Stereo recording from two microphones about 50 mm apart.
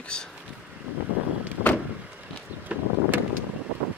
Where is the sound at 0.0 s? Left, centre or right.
Centre.